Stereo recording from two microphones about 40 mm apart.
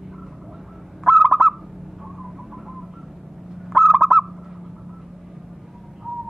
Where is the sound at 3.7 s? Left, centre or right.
Centre.